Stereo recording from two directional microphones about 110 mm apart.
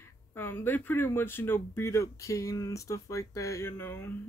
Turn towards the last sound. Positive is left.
turn(degrees=20)  # may be behind; listen again after turning